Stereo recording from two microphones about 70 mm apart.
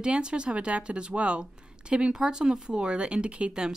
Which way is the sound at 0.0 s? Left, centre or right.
Centre.